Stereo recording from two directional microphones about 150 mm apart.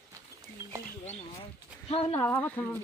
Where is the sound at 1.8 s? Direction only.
40° left (ahead or behind).